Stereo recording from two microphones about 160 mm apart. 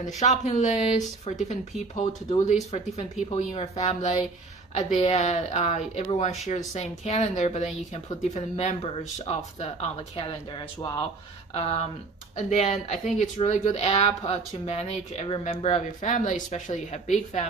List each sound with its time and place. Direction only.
0.0 s speech: 45° left (ahead or behind)
11.5 s speech: 40° left (ahead or behind)